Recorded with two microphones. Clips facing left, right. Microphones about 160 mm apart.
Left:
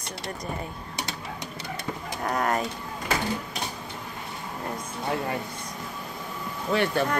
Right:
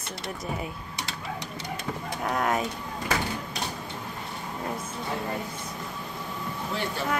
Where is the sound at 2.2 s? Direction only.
Centre (ahead or behind).